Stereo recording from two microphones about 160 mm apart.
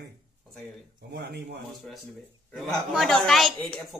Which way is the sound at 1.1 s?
90° right.